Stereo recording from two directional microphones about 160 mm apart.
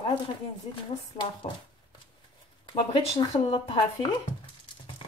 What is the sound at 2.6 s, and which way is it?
Speech, 30° left (ahead or behind).